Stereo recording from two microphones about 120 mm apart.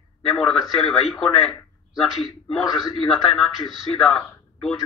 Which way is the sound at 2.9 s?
Centre (ahead or behind).